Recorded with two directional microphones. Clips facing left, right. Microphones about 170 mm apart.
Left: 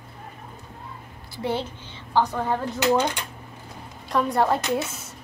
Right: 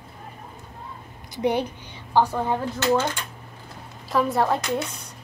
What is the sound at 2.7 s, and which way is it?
Speech, 15° left (ahead or behind).